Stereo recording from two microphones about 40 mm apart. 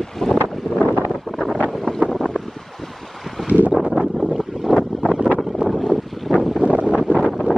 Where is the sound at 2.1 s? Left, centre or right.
Centre.